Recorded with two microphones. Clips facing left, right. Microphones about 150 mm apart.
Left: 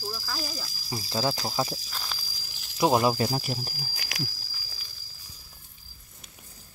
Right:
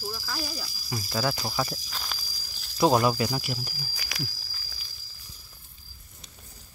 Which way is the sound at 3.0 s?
30° left (ahead or behind).